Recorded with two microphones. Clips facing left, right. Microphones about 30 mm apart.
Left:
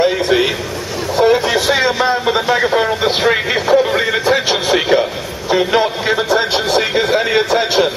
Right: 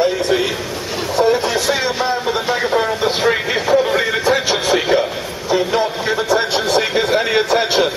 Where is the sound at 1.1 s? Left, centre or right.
Left.